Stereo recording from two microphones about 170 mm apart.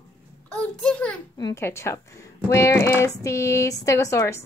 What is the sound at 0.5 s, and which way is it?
Speech, 5° left (ahead or behind).